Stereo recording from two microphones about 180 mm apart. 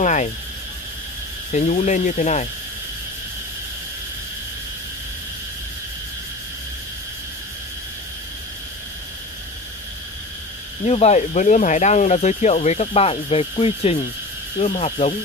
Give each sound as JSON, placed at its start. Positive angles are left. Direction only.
{"t": 0.0, "sound": "a sound", "side_deg": 40}
{"t": 1.5, "sound": "speech", "side_deg": 40}
{"t": 10.9, "sound": "speech", "side_deg": 40}